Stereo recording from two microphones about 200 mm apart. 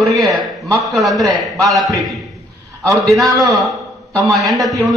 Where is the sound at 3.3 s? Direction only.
20° right (ahead or behind).